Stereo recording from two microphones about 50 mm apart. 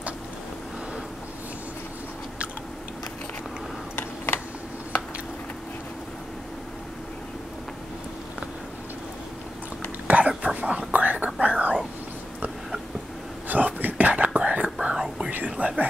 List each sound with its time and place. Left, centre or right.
10.0 s whispering: right
13.5 s whispering: right; by 15.3 s centre
15.3 s whispering: right